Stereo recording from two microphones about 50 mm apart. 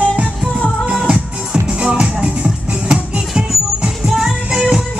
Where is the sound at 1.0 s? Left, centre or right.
Right.